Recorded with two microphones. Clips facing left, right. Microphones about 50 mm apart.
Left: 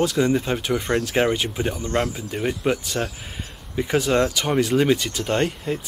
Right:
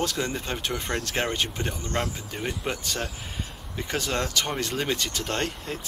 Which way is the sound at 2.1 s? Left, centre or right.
Centre.